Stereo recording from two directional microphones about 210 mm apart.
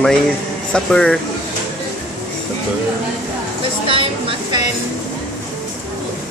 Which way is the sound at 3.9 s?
25° right (ahead or behind).